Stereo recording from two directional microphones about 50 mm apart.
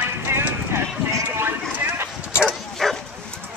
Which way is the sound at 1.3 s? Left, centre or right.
Right.